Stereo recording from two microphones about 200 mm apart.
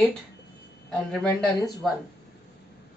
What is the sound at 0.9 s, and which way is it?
Speech, 5° left (ahead or behind).